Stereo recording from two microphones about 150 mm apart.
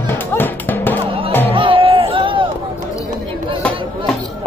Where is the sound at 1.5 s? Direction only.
35° right (ahead or behind).